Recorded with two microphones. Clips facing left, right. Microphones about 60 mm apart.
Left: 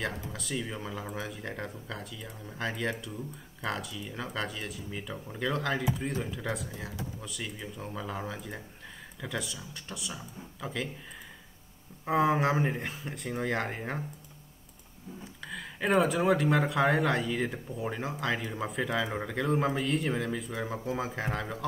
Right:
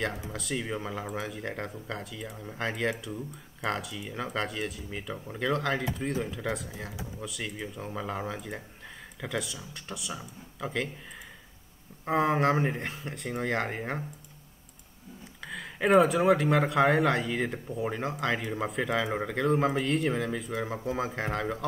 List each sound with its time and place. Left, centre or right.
0.0 s speech: centre
12.0 s speech: centre
15.4 s speech: centre